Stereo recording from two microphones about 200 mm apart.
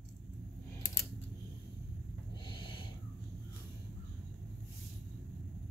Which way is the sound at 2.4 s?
25° left (ahead or behind).